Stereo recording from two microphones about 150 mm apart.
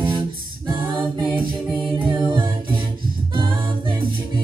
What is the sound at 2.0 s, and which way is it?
A capella, 30° right (ahead or behind).